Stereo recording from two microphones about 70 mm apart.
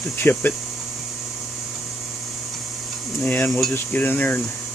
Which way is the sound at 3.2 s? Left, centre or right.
Centre.